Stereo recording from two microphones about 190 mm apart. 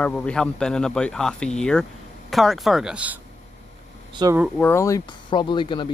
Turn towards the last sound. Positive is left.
turn(degrees=25)  # may be behind; listen again after turning